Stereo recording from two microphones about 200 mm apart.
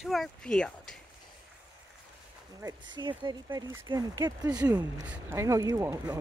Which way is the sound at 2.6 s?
25° right (ahead or behind).